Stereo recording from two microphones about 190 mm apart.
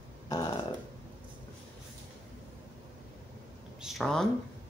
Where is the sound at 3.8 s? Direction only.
5° left (ahead or behind).